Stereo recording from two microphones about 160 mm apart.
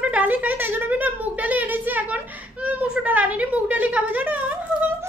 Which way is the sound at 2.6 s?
10° right (ahead or behind).